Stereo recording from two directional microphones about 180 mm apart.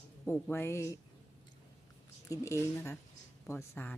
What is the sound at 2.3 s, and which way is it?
Speech, 15° left (ahead or behind).